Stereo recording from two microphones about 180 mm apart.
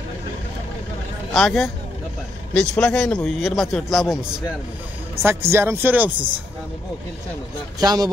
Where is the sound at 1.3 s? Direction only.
Centre (ahead or behind).